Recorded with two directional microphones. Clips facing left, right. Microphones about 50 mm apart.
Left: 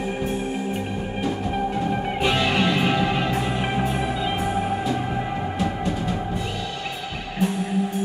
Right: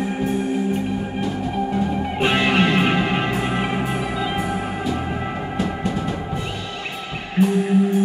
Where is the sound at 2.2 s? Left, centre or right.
Right.